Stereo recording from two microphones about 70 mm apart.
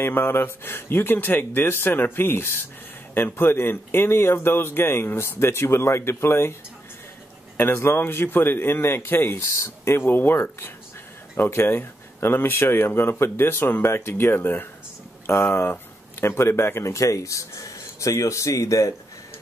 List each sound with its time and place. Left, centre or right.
0.0 s speech: left
7.5 s speech: left
9.4 s speech: left